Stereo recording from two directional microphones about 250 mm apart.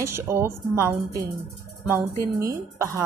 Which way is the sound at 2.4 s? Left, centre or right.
Centre.